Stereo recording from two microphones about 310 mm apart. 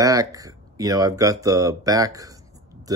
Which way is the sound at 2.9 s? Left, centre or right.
Centre.